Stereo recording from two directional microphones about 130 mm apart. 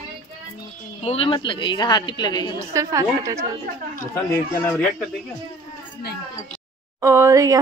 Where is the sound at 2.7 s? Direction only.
25° right (ahead or behind).